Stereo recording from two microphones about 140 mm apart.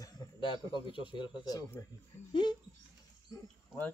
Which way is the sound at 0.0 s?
35° left (ahead or behind).